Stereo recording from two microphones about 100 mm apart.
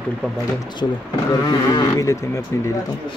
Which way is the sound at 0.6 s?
50° left (ahead or behind).